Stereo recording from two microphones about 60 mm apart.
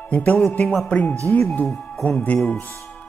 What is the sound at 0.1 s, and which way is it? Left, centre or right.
Music, left.